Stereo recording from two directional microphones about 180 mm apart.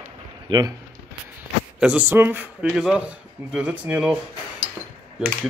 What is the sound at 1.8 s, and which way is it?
Speech, 5° right (ahead or behind).